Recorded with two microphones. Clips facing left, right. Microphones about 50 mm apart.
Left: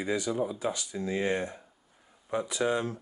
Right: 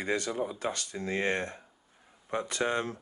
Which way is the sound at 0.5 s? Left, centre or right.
Right.